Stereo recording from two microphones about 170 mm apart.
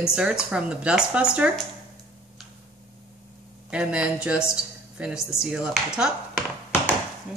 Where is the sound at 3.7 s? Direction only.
5° right (ahead or behind).